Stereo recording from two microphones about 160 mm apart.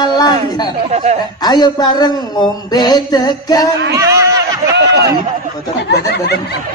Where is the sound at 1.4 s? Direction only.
25° left (ahead or behind).